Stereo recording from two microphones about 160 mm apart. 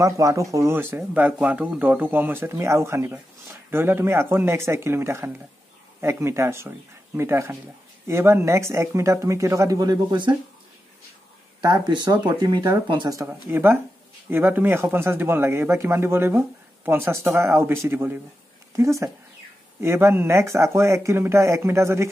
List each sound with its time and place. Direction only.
0.0 s speech: 20° right (ahead or behind)
11.6 s speech: 30° right (ahead or behind)
13.5 s speech: 15° right (ahead or behind)